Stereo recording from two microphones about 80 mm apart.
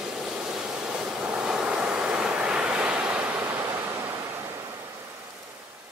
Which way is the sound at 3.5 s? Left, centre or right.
Right.